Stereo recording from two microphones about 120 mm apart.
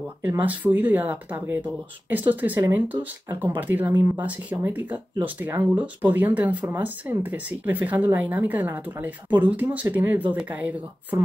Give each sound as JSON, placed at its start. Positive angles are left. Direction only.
{"t": 0.4, "sound": "speech", "side_deg": -15}